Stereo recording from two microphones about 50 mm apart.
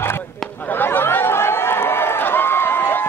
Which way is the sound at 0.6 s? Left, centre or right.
Left.